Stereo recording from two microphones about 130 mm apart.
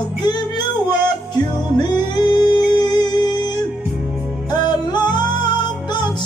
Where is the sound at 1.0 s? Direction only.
35° left (ahead or behind).